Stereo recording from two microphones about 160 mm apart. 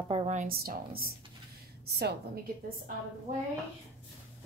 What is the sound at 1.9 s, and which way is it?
Child singing, 85° right.